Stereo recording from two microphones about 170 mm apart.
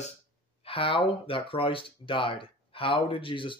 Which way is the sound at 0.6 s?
30° left (ahead or behind).